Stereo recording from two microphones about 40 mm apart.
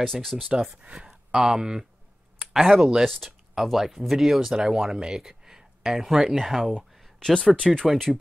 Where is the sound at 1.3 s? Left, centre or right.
Centre.